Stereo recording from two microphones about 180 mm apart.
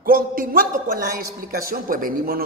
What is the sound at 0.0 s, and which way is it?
A man's voice, 50° right (ahead or behind).